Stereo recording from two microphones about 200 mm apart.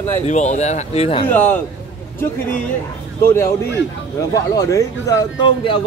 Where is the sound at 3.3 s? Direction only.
15° left (ahead or behind).